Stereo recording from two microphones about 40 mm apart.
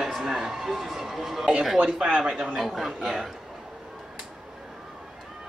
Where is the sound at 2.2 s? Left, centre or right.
Centre.